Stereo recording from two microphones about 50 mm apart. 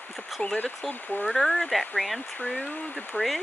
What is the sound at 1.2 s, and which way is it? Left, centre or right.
Speech, centre.